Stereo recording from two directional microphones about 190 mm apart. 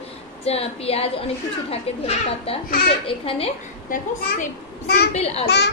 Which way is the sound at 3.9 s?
50° left (ahead or behind).